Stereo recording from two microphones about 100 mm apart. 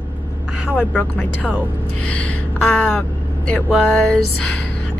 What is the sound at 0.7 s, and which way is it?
Speech, 15° left (ahead or behind).